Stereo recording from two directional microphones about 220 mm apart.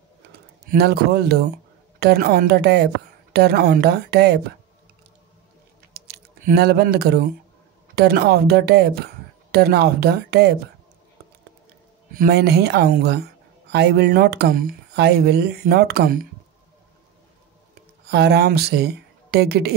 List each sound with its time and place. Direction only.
0.7 s a woman's voice: 45° right (ahead or behind)
5.9 s typing: 45° right (ahead or behind)
7.9 s a woman's voice: 45° right (ahead or behind)
12.1 s a woman's voice: 45° right (ahead or behind)
18.0 s speech: 45° right (ahead or behind)